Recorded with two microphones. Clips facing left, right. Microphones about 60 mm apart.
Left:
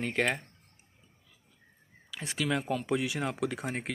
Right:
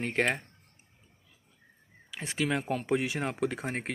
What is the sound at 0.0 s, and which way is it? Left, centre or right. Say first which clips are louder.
Speech: right 1 dB; right.